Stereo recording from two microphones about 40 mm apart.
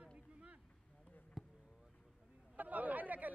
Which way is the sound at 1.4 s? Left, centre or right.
Centre.